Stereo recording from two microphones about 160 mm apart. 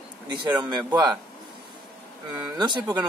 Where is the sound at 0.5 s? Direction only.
25° right (ahead or behind).